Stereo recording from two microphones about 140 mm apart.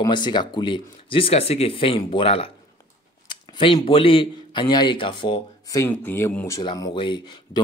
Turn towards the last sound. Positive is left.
turn(degrees=35)  # may be behind; listen again after turning